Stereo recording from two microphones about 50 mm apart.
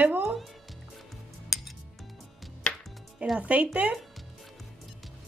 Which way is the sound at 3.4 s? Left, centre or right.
Right.